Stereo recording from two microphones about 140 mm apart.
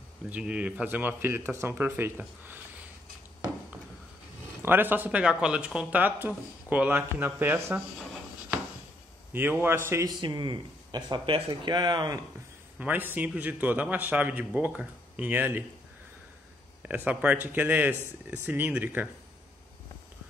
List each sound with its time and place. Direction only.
0.3 s speech: 5° right (ahead or behind)
4.6 s speech: 15° right (ahead or behind)
9.3 s speech: 15° right (ahead or behind)
10.2 s speech: 35° right (ahead or behind)
12.7 s speech: 10° right (ahead or behind)
16.8 s speech: 10° right (ahead or behind)